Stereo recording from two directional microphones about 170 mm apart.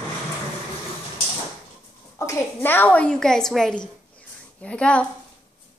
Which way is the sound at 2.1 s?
15° left (ahead or behind).